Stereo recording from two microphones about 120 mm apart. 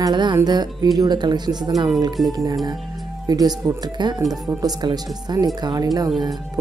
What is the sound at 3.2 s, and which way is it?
Speech, 30° right (ahead or behind).